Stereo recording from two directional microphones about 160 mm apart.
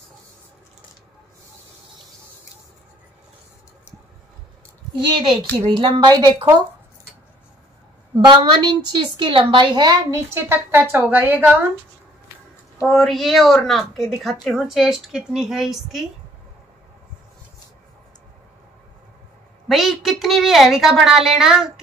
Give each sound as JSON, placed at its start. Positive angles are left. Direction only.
{"t": 5.0, "sound": "a woman's voice", "side_deg": -30}
{"t": 8.3, "sound": "a woman's voice", "side_deg": -30}
{"t": 12.8, "sound": "a woman's voice", "side_deg": 0}
{"t": 19.7, "sound": "a woman's voice", "side_deg": 0}